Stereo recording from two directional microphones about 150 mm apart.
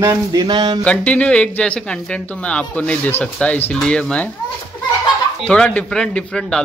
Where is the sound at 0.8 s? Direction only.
10° left (ahead or behind).